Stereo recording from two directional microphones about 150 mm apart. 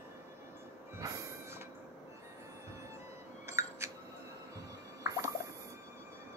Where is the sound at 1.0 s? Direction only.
25° right (ahead or behind).